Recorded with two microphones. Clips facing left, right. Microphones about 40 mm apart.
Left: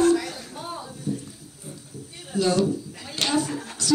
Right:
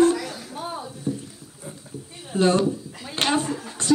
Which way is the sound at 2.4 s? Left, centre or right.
Right.